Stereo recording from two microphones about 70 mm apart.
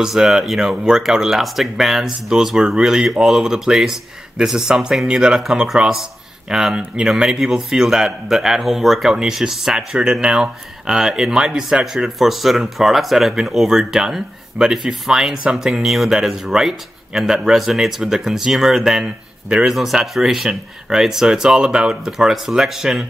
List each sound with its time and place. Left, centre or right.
0.0 s speech: centre